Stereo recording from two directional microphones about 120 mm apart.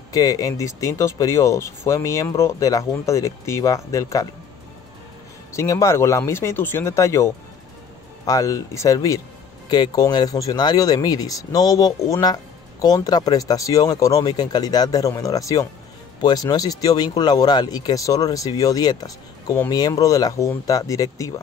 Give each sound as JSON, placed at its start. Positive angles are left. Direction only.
{"t": 0.1, "sound": "speech", "side_deg": 30}
{"t": 5.5, "sound": "speech", "side_deg": 25}